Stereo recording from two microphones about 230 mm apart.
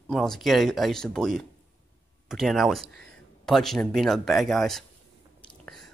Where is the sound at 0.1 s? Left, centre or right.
Centre.